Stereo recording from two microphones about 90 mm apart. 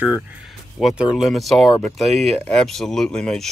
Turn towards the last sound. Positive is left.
turn(degrees=10)  # may be behind; listen again after turning